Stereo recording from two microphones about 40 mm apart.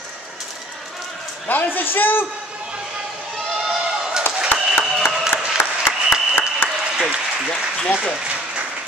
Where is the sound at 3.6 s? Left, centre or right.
Centre.